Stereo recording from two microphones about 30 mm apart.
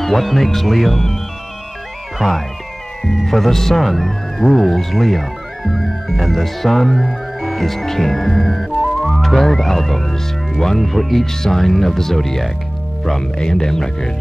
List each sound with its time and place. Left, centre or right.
0.0 s speech: centre
2.2 s music: centre
3.0 s speech: centre
10.8 s speech: centre
13.2 s speech: left